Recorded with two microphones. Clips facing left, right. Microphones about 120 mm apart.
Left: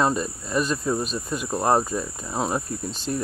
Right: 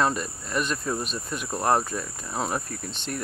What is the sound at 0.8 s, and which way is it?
Cricket, 10° left (ahead or behind).